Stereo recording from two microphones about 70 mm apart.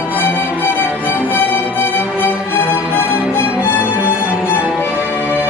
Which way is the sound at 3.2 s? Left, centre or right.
Centre.